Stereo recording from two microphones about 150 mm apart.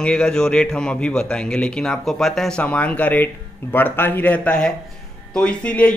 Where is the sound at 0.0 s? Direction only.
5° left (ahead or behind).